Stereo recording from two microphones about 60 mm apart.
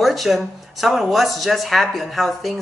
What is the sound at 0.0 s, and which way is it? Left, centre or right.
Speech, centre.